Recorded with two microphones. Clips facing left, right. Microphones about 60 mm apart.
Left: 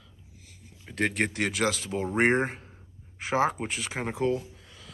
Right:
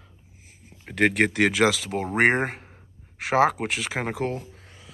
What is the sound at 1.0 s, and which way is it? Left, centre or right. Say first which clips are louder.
Speech: right 6 dB; right.